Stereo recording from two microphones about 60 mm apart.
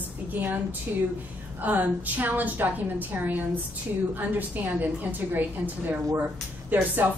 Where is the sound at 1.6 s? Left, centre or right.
Right.